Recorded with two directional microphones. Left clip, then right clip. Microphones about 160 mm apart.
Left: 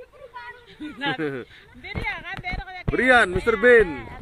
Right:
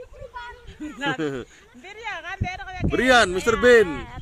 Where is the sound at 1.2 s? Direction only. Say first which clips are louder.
Right 1 dB; 30° right (ahead or behind).